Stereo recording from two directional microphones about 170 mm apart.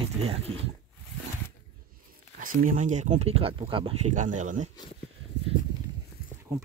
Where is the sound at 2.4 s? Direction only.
55° right (ahead or behind); by 4.1 s 30° right (ahead or behind).